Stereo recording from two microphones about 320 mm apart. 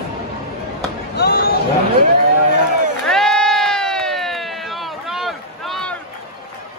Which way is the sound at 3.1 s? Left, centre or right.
Centre.